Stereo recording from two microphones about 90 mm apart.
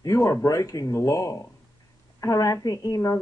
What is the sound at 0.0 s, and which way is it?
A woman's voice, 40° left (ahead or behind).